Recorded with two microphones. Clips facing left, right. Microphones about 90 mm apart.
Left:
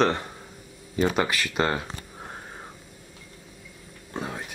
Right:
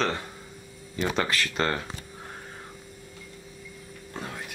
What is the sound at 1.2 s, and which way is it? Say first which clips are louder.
Speech: left 2 dB; 5° left (ahead or behind).